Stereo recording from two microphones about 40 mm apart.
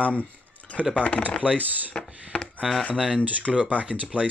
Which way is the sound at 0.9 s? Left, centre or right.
Left.